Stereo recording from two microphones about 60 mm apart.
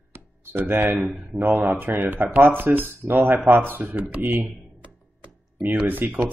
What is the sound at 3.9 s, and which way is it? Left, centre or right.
Speech, right.